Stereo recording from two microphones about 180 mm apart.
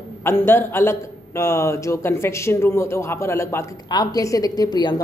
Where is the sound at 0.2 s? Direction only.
15° left (ahead or behind).